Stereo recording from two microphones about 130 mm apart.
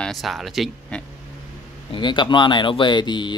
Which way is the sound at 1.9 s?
35° left (ahead or behind).